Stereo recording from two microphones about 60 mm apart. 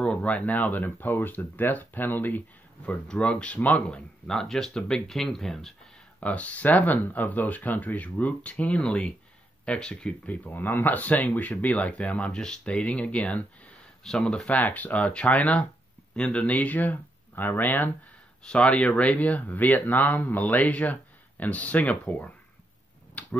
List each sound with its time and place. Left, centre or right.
0.0 s speech: left
3.1 s speech: centre
4.3 s speech: centre
6.1 s speech: left
14.0 s speech: centre
14.5 s speech: left
18.4 s speech: centre
23.2 s tick-tock: left